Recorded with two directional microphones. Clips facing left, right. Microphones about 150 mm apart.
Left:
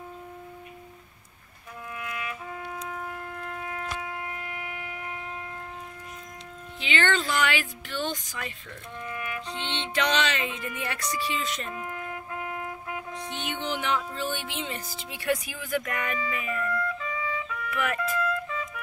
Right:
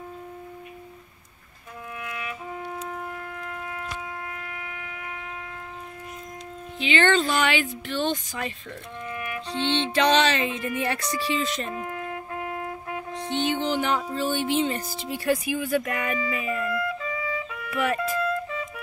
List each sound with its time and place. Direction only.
2.2 s music: 25° right (ahead or behind)
7.0 s speech: 30° right (ahead or behind)
9.1 s music: 20° right (ahead or behind)
9.5 s music: 30° right (ahead or behind)
12.9 s music: 30° right (ahead or behind)
14.1 s speech: 35° right (ahead or behind)